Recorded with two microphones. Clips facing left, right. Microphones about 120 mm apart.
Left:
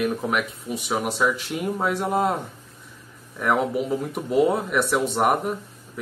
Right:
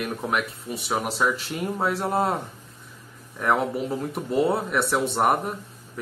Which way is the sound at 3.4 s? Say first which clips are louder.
Left 1 dB; 5° left (ahead or behind).